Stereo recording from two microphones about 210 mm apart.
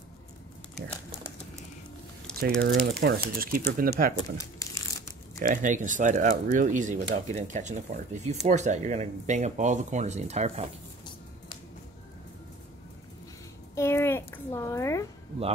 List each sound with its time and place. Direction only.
2.6 s speech: 55° right (ahead or behind)
4.4 s crumpling: 15° left (ahead or behind)
5.4 s speech: 40° right (ahead or behind)
13.7 s a sound: 10° left (ahead or behind)